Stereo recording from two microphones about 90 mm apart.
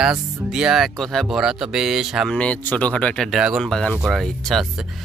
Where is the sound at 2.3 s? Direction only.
15° left (ahead or behind).